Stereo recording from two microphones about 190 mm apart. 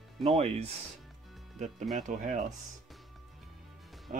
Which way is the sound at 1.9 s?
40° right (ahead or behind).